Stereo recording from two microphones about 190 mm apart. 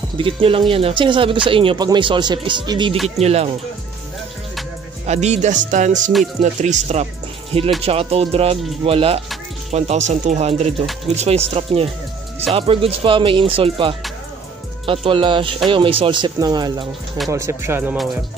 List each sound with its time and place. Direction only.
0.2 s speech: 25° right (ahead or behind)
5.0 s speech: 35° right (ahead or behind); by 17.9 s 10° right (ahead or behind)